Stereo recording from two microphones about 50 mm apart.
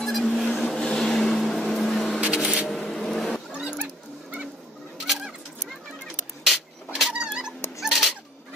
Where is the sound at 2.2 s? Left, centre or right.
Right.